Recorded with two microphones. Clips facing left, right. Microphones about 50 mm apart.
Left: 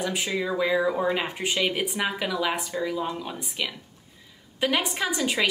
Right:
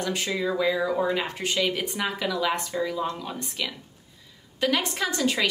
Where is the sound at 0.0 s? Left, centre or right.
Centre.